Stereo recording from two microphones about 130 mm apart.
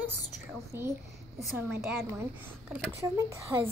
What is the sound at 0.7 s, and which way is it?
A woman's voice, 20° right (ahead or behind).